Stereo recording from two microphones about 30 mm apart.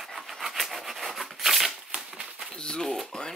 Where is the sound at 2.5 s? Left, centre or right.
Left.